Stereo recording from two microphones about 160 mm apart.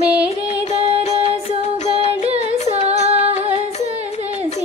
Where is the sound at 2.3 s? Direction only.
40° right (ahead or behind).